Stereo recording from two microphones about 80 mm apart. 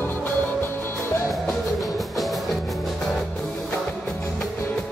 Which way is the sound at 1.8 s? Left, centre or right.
Centre.